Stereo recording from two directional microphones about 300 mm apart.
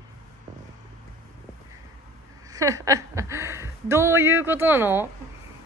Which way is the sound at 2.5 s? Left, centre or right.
Centre.